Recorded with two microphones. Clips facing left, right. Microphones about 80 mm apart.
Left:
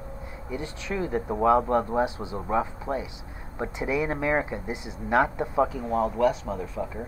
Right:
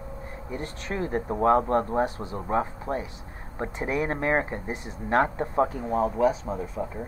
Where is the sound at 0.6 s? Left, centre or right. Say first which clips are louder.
Even; centre.